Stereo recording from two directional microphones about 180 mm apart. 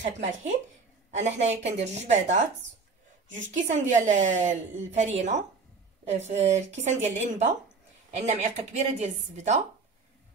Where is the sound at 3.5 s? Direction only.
40° right (ahead or behind).